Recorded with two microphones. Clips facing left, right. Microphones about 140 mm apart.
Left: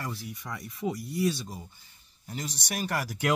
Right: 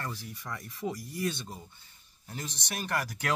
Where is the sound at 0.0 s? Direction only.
10° left (ahead or behind).